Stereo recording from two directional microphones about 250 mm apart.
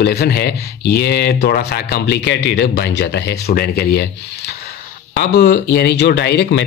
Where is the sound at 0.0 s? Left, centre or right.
Left.